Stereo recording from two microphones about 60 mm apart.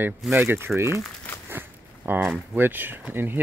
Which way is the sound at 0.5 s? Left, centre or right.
Right.